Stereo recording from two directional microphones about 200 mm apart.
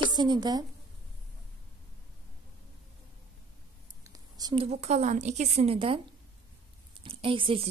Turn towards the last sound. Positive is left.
turn(degrees=-25)  # may be behind; listen again after turning